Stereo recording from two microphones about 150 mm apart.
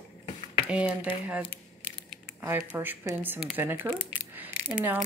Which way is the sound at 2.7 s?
15° right (ahead or behind).